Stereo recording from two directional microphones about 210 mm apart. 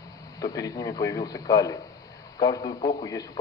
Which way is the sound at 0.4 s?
15° left (ahead or behind).